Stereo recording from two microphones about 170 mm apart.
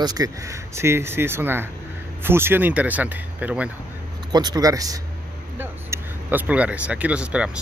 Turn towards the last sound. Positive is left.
turn(degrees=-5)  # may be behind; listen again after turning